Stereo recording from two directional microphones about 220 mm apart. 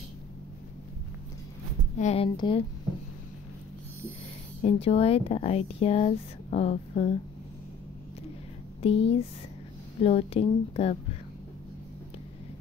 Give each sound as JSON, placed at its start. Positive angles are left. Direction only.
{"t": 2.0, "sound": "speech", "side_deg": 30}
{"t": 4.6, "sound": "speech", "side_deg": 25}
{"t": 8.8, "sound": "speech", "side_deg": 25}